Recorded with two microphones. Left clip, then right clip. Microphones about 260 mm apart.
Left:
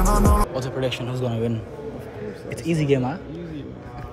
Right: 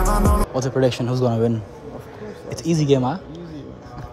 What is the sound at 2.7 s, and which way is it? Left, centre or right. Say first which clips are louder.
Speech: right 3 dB; right.